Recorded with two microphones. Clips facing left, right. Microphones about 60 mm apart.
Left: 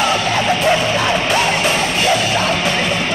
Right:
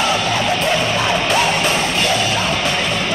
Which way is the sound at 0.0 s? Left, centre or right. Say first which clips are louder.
Left 1 dB; centre.